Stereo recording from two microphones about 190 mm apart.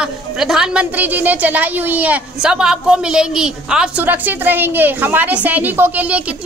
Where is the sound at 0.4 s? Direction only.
Centre (ahead or behind).